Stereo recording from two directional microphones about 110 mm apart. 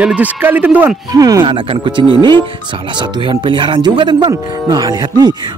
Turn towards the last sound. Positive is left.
turn(degrees=-35)  # may be behind; listen again after turning